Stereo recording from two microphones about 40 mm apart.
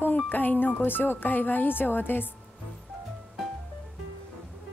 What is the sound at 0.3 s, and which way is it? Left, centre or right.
Speech, left.